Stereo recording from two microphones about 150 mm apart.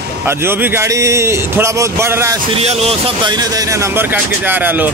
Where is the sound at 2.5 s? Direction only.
45° right (ahead or behind).